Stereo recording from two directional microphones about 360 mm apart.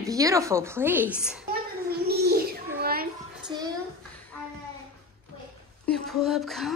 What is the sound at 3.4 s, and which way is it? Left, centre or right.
Child singing, centre.